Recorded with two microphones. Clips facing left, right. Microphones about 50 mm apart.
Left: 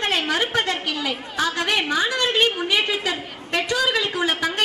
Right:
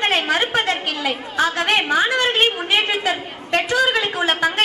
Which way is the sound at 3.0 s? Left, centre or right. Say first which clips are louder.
Right 4 dB; right.